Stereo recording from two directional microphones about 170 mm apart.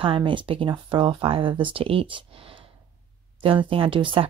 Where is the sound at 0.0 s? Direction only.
30° right (ahead or behind).